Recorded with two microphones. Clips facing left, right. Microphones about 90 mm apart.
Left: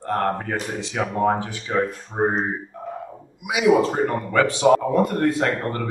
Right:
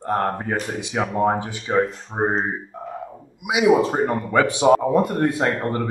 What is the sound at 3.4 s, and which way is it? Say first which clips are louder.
A man's voice: right 1 dB; 20° right (ahead or behind).